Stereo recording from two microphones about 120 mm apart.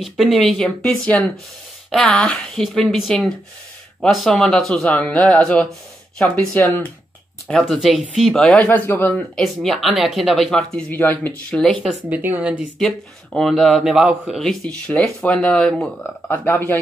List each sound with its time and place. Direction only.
0.0 s speech: centre (ahead or behind); by 6.9 s 15° left (ahead or behind)
7.4 s speech: 5° left (ahead or behind)
9.4 s speech: centre (ahead or behind)
10.9 s speech: 15° left (ahead or behind)
11.6 s speech: centre (ahead or behind)
12.1 s speech: 15° right (ahead or behind)
12.7 s speech: 5° left (ahead or behind)
16.0 s speech: 15° left (ahead or behind)